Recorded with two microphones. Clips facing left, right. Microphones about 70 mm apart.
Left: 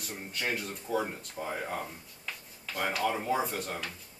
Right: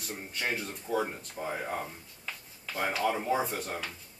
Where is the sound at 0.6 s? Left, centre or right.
Centre.